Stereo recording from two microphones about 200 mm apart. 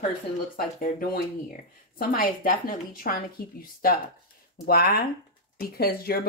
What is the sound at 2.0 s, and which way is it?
Speech, 45° left (ahead or behind).